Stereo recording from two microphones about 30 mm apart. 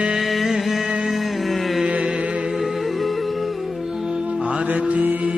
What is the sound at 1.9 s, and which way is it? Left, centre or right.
Music, right.